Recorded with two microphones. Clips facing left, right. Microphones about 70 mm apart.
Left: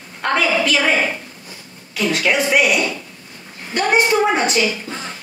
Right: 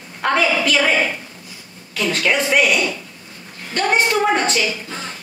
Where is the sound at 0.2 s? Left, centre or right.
Centre.